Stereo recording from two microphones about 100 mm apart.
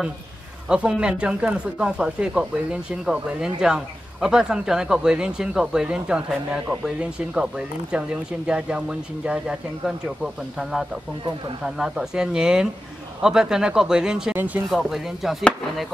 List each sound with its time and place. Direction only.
0.7 s speech: 10° right (ahead or behind)
14.3 s speech: 15° right (ahead or behind)
14.7 s speech: centre (ahead or behind)